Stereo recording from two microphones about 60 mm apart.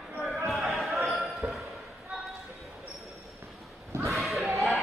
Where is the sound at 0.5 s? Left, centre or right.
Centre.